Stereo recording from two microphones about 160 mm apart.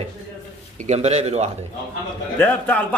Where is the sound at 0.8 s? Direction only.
45° right (ahead or behind).